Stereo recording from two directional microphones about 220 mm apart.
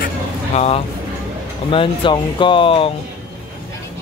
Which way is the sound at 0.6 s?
30° left (ahead or behind).